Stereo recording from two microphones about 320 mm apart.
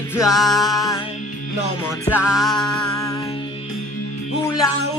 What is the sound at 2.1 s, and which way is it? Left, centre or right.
Music, centre.